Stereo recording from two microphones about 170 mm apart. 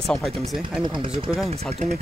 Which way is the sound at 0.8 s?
25° right (ahead or behind).